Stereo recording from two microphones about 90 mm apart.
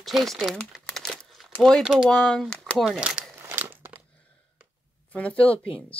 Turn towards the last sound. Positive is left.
turn(degrees=90)